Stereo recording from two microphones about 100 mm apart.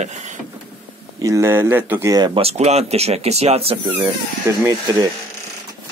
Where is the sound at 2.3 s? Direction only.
90° right.